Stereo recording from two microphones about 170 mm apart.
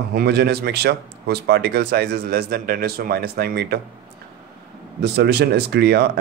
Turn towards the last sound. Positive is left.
turn(degrees=-70)  # may be behind; listen again after turning